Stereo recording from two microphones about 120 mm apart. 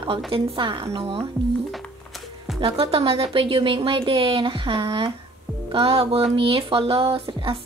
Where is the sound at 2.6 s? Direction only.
50° right (ahead or behind).